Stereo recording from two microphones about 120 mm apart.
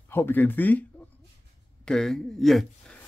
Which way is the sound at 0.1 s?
15° left (ahead or behind).